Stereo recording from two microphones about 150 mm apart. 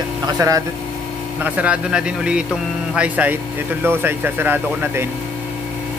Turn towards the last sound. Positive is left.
turn(degrees=-15)  # may be behind; listen again after turning